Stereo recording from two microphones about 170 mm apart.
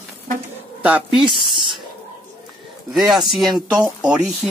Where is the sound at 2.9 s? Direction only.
Centre (ahead or behind).